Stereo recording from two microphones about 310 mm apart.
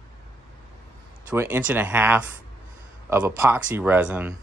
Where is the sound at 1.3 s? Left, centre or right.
Centre.